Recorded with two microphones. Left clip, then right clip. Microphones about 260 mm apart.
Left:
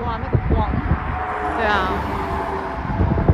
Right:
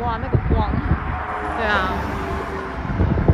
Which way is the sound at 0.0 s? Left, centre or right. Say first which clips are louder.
Right 1 dB; right.